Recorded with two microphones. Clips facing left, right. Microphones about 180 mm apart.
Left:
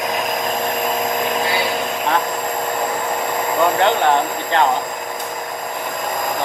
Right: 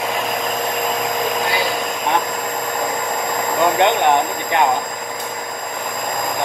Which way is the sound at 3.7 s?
20° right (ahead or behind).